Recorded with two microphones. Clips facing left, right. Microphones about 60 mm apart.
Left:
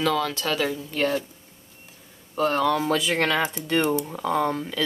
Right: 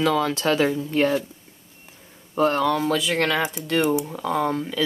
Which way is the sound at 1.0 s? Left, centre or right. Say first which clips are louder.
Right 3 dB; centre.